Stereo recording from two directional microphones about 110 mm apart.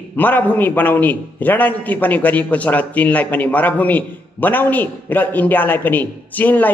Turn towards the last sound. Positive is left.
turn(degrees=15)  # may be behind; listen again after turning